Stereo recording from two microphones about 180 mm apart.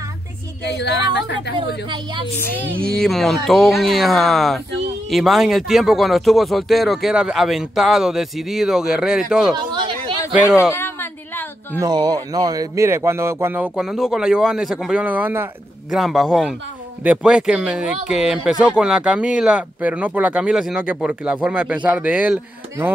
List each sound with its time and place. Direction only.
0.7 s a woman's voice: 70° left (ahead or behind)
2.3 s speech: 10° left (ahead or behind)
10.7 s a sound: 10° left (ahead or behind)
11.8 s speech: 20° right (ahead or behind)
16.0 s speech: centre (ahead or behind)